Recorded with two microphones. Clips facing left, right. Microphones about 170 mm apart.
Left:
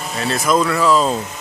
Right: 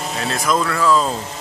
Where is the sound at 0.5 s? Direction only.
10° left (ahead or behind).